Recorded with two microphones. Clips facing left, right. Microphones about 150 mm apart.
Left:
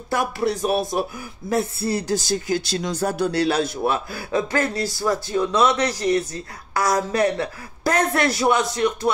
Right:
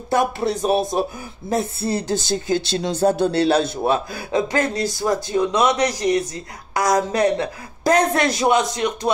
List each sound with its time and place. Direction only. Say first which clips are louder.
0.1 s speech: right 3 dB; 20° right (ahead or behind)